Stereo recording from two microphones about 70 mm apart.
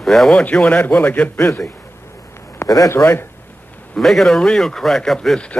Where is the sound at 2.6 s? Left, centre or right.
Left.